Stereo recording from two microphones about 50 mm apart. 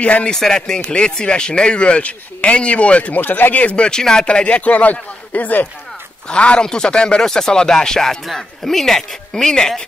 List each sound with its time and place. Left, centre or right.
0.0 s speech: left
0.3 s speech: centre; by 3.2 s left
3.2 s speech: left
3.6 s speech: left
6.2 s speech: left